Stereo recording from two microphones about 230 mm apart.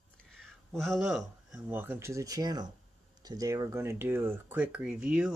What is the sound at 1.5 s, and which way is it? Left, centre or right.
Speech, centre.